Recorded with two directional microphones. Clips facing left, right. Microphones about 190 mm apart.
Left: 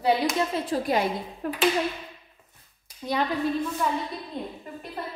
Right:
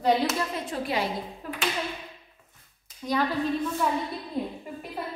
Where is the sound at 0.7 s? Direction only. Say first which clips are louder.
Left 4 dB; 45° left (ahead or behind).